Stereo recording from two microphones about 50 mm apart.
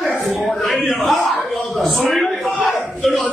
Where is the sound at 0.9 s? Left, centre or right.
Centre.